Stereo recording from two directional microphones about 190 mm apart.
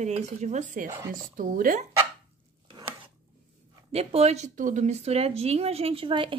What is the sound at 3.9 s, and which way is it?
Speech, 35° right (ahead or behind).